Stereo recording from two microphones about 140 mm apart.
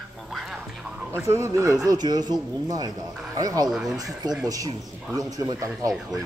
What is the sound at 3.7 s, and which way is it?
Speech, 5° right (ahead or behind).